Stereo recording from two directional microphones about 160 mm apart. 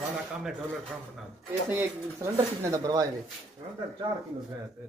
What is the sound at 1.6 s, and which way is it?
Speech, 15° right (ahead or behind).